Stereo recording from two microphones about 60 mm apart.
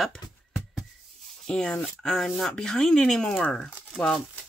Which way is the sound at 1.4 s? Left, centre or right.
Centre.